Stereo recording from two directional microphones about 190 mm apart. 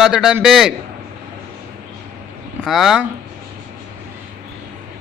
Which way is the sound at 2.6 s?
Centre (ahead or behind).